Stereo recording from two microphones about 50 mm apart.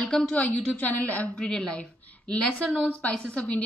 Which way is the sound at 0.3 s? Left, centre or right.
Left.